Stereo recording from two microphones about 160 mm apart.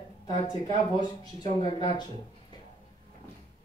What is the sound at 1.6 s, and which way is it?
Speech, 30° left (ahead or behind).